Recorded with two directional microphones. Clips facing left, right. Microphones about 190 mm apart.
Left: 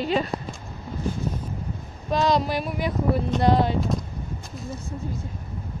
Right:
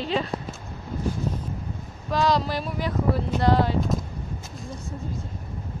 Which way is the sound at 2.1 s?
20° left (ahead or behind).